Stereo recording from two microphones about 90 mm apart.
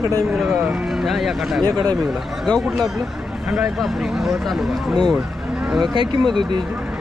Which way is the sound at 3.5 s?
5° right (ahead or behind).